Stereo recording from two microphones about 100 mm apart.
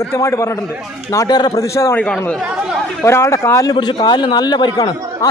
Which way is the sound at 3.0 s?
30° left (ahead or behind).